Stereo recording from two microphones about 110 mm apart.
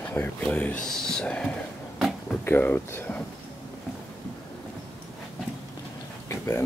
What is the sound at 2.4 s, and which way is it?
Speech, 15° left (ahead or behind).